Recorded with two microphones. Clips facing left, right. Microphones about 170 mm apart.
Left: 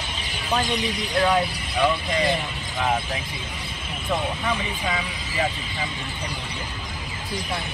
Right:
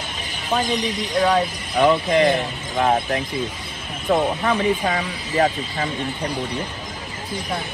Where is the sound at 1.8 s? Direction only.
45° right (ahead or behind).